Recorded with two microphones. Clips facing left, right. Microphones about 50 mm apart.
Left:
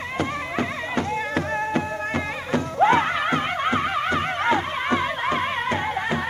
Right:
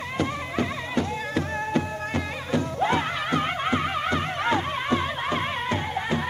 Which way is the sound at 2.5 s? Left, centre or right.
Left.